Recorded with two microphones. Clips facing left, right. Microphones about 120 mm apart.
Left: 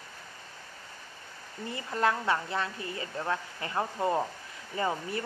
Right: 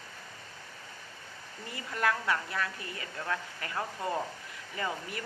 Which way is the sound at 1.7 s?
25° left (ahead or behind).